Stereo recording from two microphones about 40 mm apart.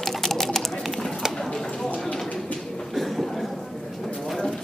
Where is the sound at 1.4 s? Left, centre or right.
Centre.